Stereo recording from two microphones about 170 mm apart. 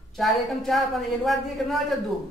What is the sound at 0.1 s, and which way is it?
A man's voice, centre (ahead or behind).